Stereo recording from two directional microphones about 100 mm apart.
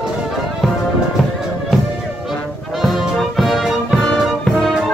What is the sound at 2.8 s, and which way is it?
Music, centre (ahead or behind).